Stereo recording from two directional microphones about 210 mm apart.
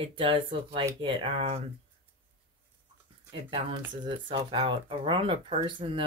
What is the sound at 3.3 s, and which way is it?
Speech, 25° right (ahead or behind).